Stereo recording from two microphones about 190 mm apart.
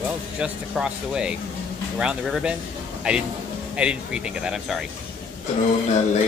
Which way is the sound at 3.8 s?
5° right (ahead or behind).